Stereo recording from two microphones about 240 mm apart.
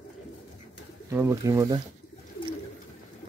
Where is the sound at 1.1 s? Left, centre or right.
Centre.